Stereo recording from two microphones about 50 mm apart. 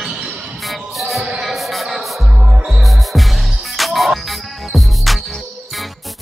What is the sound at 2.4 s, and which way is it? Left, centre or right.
Music, centre.